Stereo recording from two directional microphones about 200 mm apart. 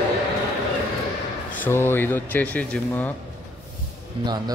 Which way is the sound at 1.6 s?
10° left (ahead or behind).